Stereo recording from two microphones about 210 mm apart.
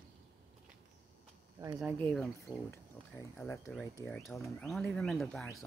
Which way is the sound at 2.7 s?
10° left (ahead or behind).